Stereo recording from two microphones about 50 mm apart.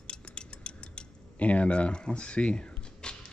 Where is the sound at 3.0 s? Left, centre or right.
Centre.